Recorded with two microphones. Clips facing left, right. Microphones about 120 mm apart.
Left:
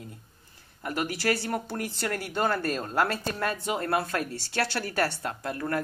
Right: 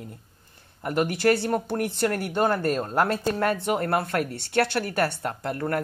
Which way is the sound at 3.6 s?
55° right (ahead or behind).